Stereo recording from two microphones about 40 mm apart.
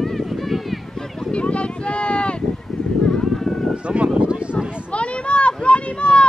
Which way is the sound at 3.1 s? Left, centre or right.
Centre.